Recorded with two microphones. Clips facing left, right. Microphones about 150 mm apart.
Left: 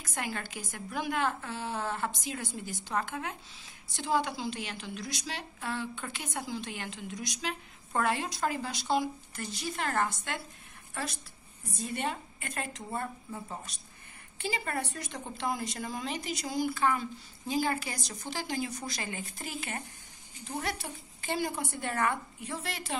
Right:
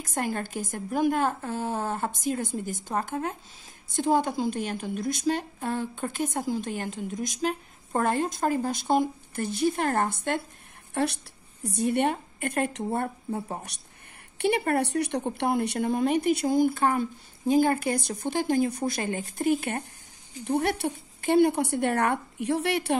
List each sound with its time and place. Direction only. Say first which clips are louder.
0.0 s a woman's voice: right 7 dB; 50° right (ahead or behind); by 22.9 s 65° right (ahead or behind)